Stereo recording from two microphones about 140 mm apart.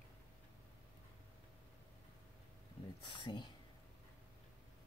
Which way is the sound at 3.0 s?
35° left (ahead or behind).